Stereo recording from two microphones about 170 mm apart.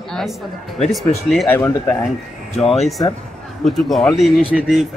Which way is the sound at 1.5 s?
15° left (ahead or behind).